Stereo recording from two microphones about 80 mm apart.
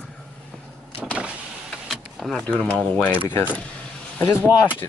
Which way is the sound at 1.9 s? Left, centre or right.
Centre.